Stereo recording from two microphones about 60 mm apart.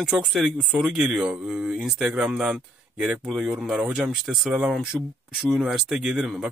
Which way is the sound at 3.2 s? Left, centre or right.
Centre.